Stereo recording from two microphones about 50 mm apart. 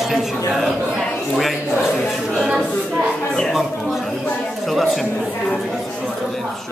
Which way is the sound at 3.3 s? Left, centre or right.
Centre.